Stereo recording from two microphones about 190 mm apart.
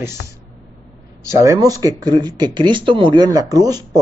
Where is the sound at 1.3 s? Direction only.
15° right (ahead or behind).